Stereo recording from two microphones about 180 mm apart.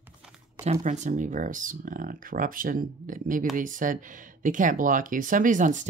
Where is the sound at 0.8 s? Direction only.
45° right (ahead or behind).